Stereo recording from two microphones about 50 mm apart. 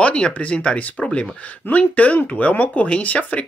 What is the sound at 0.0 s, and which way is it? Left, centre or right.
Speech, left.